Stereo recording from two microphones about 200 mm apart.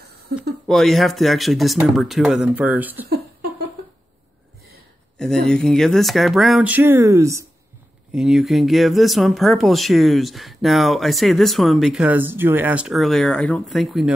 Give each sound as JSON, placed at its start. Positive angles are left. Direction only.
{"t": 0.7, "sound": "speech", "side_deg": 0}
{"t": 5.1, "sound": "speech", "side_deg": 5}
{"t": 8.1, "sound": "speech", "side_deg": -5}